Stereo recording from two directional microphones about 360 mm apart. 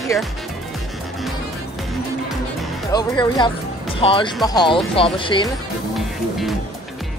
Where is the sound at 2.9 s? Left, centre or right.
Centre.